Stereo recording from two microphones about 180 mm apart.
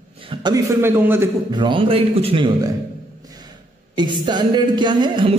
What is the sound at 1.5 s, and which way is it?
A man's voice, 25° right (ahead or behind).